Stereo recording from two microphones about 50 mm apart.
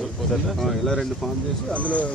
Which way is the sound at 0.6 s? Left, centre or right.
Centre.